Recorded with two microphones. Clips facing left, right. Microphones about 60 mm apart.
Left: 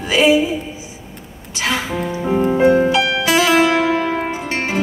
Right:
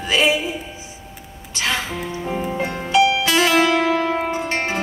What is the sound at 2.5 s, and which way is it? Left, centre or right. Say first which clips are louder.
Music: left 5 dB; left.